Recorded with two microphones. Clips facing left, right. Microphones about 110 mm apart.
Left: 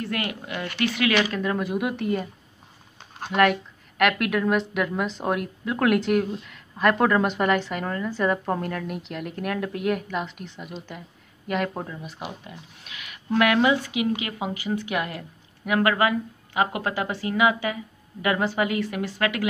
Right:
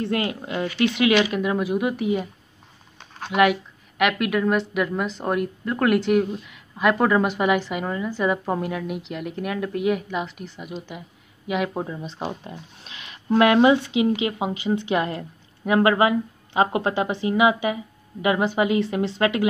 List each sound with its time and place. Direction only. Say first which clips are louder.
0.0 s a woman's voice: right 5 dB; 25° right (ahead or behind); by 2.2 s 5° right (ahead or behind)
3.3 s a woman's voice: right 2 dB; 5° right (ahead or behind)
11.9 s speech: right 5 dB; 25° right (ahead or behind)